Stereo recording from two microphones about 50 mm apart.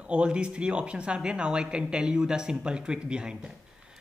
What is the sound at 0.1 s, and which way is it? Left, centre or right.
A woman's voice, right.